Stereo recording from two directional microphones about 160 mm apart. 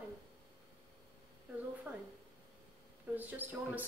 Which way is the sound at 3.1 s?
10° right (ahead or behind).